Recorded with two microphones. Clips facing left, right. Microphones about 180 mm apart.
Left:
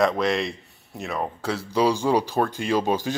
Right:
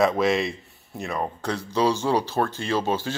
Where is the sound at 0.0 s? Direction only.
5° right (ahead or behind).